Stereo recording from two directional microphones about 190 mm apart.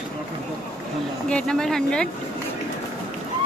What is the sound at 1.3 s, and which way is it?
Speech, 5° left (ahead or behind).